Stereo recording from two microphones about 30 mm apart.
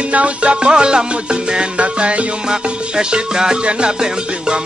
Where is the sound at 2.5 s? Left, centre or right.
Right.